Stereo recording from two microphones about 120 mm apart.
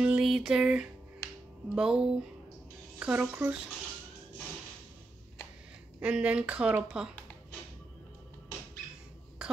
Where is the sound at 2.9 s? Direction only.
10° right (ahead or behind).